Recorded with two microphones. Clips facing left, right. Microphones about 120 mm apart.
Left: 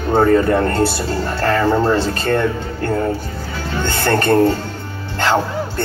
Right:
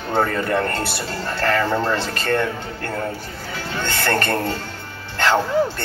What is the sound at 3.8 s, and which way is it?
Speech, 30° left (ahead or behind).